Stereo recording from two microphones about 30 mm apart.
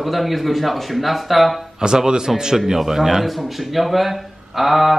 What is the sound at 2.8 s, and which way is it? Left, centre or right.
A man's voice, centre.